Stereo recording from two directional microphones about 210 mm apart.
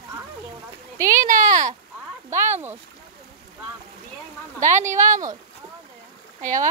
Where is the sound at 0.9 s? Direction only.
15° right (ahead or behind).